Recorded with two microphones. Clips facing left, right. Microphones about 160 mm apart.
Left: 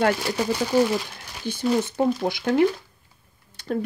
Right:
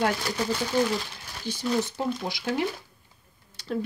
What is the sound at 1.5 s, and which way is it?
Speech, 55° left (ahead or behind).